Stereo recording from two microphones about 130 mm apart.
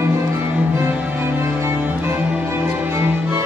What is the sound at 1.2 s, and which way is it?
Music, 20° right (ahead or behind).